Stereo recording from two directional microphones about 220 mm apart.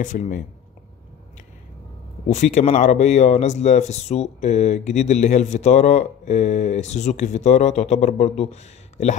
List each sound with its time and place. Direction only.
0.0 s a man's voice: 35° left (ahead or behind)
2.2 s a man's voice: 30° left (ahead or behind)